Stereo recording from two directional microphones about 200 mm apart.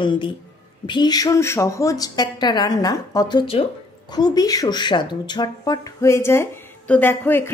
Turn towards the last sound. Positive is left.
turn(degrees=10)  # may be behind; listen again after turning